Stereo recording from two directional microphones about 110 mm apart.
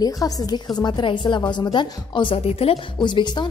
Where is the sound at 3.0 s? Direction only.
45° left (ahead or behind).